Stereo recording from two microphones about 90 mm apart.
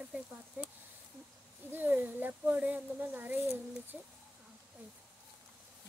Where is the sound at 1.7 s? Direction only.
20° right (ahead or behind).